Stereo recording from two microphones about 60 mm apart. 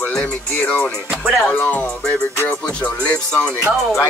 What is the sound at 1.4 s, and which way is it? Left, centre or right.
Music, left.